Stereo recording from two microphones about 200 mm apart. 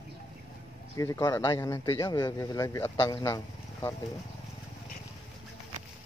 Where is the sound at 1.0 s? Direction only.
15° left (ahead or behind).